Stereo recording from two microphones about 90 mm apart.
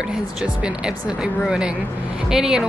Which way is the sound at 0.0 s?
10° right (ahead or behind).